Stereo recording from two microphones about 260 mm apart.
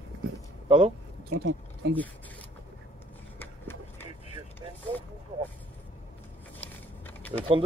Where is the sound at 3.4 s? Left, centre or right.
Centre.